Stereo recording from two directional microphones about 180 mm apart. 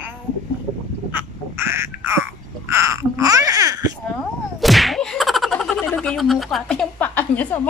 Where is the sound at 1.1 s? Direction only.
15° right (ahead or behind).